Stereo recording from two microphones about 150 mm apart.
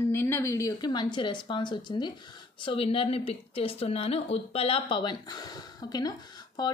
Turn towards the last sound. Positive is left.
turn(degrees=25)  # may be behind; listen again after turning